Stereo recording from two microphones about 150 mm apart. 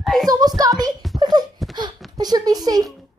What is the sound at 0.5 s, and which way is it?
Speech, 25° right (ahead or behind).